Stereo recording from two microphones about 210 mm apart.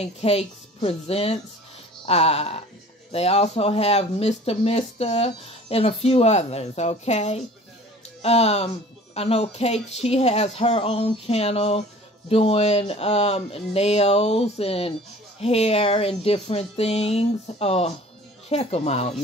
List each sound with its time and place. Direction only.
0.0 s speech: 30° left (ahead or behind)